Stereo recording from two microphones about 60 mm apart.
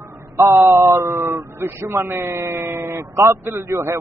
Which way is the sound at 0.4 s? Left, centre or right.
Right.